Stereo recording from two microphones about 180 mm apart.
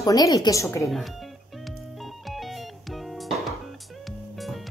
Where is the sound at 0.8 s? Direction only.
Centre (ahead or behind).